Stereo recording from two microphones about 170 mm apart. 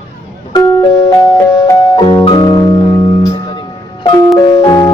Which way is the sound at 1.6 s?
25° left (ahead or behind).